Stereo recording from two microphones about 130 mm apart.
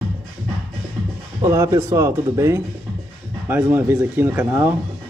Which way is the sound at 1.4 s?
20° right (ahead or behind).